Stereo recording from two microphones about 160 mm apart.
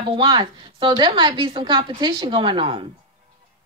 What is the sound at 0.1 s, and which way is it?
A woman's voice, 30° right (ahead or behind).